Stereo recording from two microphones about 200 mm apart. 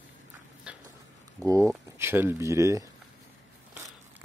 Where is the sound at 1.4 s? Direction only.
10° left (ahead or behind).